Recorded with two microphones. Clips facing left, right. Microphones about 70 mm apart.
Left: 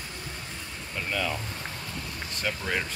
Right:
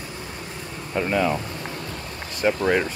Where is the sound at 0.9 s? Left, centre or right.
Right.